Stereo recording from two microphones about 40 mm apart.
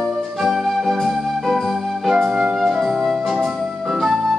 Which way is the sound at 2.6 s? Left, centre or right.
Centre.